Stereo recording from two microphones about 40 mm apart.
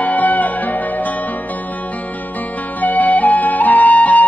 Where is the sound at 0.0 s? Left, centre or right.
Left.